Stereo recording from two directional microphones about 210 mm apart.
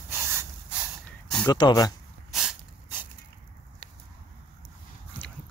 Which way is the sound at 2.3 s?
5° right (ahead or behind).